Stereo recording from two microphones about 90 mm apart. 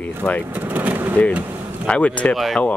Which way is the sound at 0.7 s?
20° right (ahead or behind).